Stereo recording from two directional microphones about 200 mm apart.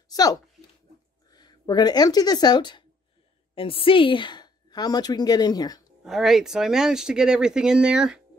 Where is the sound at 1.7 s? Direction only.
20° left (ahead or behind).